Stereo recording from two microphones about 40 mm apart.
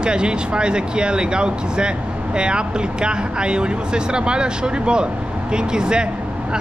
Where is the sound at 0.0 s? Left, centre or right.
Right.